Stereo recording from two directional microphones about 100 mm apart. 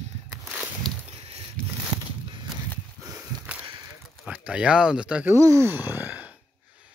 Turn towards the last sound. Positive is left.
turn(degrees=-15)  # may be behind; listen again after turning